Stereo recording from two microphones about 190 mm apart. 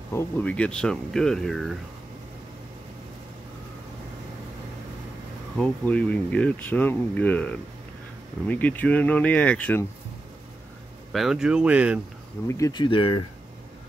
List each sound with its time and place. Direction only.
0.1 s speech: 10° left (ahead or behind)
5.6 s speech: 5° left (ahead or behind)
11.1 s speech: centre (ahead or behind)
12.4 s speech: 15° left (ahead or behind)